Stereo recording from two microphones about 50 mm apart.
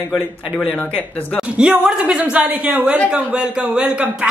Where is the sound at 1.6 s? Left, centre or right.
Centre.